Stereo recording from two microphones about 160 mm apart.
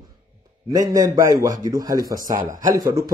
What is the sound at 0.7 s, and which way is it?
Speech, 20° right (ahead or behind).